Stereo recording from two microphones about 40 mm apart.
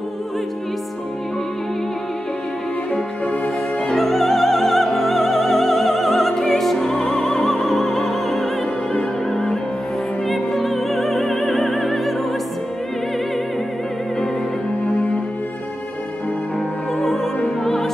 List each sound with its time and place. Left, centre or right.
3.8 s opera: centre
10.2 s music: centre
17.0 s opera: centre
17.6 s music: centre